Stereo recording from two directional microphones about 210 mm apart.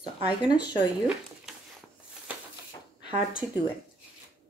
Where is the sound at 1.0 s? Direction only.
5° right (ahead or behind).